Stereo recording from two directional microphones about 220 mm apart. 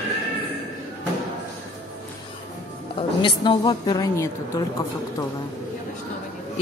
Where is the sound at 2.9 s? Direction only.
20° left (ahead or behind).